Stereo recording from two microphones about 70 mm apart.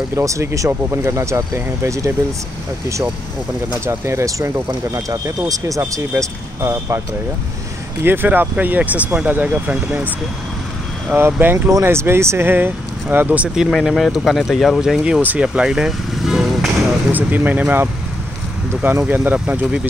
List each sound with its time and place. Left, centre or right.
0.1 s speech: right
3.8 s speech: right
8.0 s speech: right
11.1 s speech: right
13.6 s speech: centre
14.8 s speech: centre
17.1 s speech: right